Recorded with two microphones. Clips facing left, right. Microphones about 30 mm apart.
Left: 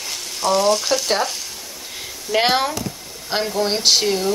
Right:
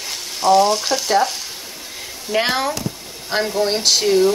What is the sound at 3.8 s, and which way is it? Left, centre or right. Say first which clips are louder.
Speech: left 1 dB; centre.